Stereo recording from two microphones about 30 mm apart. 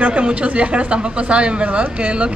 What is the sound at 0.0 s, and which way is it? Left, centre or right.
A man's voice, right.